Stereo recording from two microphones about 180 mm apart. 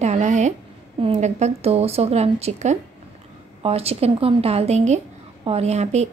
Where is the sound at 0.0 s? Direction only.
40° right (ahead or behind).